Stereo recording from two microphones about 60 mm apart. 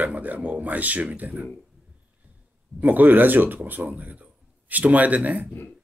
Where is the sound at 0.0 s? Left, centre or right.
Right.